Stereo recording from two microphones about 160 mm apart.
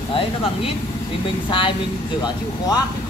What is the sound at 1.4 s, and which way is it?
Speech, 30° left (ahead or behind).